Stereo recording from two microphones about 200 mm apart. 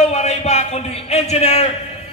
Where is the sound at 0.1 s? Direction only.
35° left (ahead or behind).